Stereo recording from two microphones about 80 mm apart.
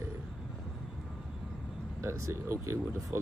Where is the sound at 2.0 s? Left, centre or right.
Right.